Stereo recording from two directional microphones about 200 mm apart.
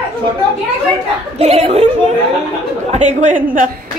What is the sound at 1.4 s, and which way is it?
Speech, 30° right (ahead or behind).